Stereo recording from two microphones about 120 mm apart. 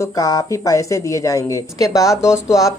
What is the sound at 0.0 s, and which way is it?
A woman's voice, 30° left (ahead or behind).